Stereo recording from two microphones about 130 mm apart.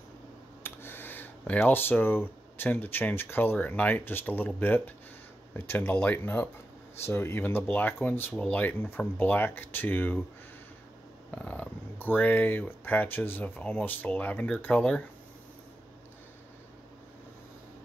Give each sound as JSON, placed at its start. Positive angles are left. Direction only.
{"t": 0.7, "sound": "speech", "side_deg": 15}
{"t": 11.3, "sound": "speech", "side_deg": 10}